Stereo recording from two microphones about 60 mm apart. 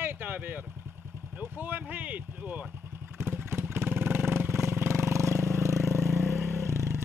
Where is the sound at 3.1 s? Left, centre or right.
Right.